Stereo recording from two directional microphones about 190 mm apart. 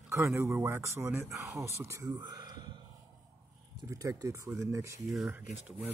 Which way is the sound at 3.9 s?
15° right (ahead or behind).